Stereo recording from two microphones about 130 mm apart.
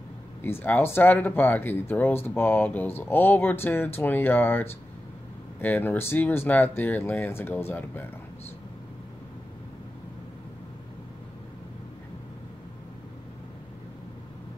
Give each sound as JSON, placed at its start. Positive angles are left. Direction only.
{"t": 0.4, "sound": "speech", "side_deg": 15}